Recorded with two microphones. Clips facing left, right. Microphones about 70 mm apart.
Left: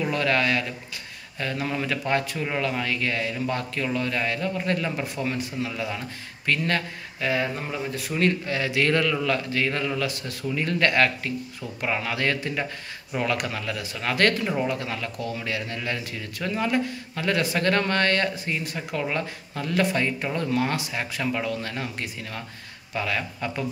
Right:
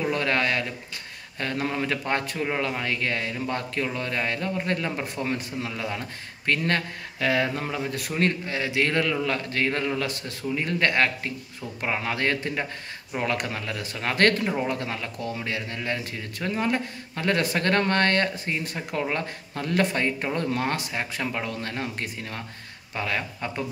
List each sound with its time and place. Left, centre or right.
0.1 s speech: right
7.2 s speech: right
7.7 s a man's voice: right
8.5 s speech: right
10.5 s speech: right
20.9 s speech: right